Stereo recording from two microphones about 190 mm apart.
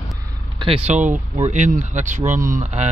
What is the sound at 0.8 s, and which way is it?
Speech, 40° right (ahead or behind).